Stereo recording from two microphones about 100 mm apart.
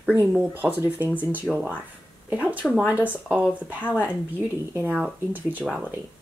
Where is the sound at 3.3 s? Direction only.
15° right (ahead or behind).